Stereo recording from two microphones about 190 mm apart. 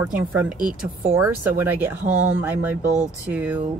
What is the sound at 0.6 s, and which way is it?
Speech, 45° right (ahead or behind).